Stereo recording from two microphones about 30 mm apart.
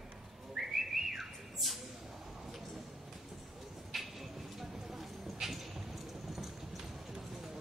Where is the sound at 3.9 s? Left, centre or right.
Centre.